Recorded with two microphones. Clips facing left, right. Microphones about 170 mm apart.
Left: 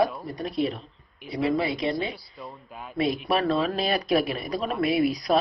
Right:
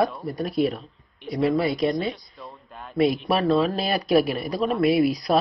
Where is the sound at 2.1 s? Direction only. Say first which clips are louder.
Left 1 dB; centre (ahead or behind).